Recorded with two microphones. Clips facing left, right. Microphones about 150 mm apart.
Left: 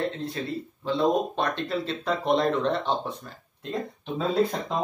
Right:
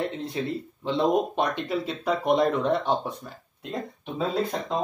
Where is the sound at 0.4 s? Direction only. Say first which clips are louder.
Right 2 dB; 15° right (ahead or behind).